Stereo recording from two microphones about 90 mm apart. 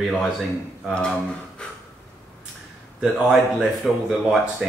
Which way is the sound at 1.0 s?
10° left (ahead or behind).